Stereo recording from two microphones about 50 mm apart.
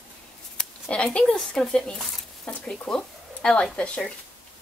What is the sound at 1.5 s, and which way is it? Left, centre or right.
Speech, centre.